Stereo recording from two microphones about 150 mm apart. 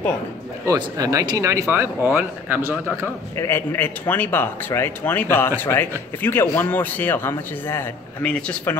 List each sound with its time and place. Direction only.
0.7 s speech: 25° right (ahead or behind)
3.3 s speech: 15° left (ahead or behind)